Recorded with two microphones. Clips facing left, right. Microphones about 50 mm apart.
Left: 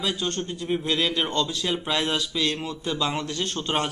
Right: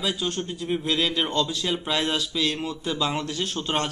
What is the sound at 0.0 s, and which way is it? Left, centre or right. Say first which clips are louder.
Speech: even; centre.